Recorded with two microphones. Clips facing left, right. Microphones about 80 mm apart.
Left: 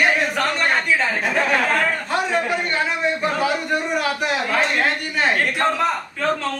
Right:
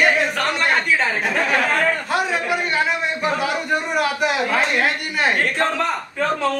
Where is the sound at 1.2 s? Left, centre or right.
Centre.